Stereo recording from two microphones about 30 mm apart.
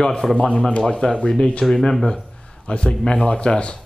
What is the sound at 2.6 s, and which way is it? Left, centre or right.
A man's voice, left.